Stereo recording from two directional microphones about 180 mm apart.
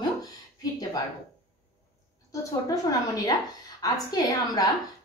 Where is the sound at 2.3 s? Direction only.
20° left (ahead or behind).